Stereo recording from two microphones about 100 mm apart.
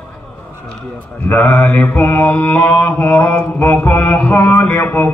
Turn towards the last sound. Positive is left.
turn(degrees=20)  # may be behind; listen again after turning